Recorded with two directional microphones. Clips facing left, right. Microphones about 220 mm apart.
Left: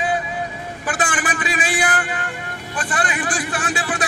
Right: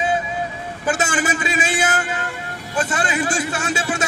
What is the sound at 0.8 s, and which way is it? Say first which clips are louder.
A man's voice: right 3 dB; 25° right (ahead or behind).